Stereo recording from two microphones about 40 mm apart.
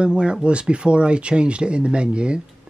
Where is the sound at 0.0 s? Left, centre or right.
Right.